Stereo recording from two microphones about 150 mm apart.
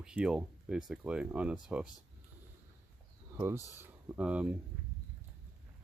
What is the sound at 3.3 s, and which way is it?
Speech, 15° right (ahead or behind).